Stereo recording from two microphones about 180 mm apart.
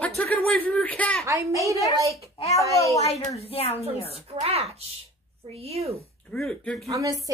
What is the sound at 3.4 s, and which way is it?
Speech, 35° left (ahead or behind).